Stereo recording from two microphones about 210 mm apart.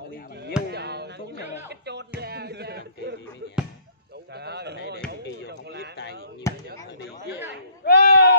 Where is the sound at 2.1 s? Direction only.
50° right (ahead or behind).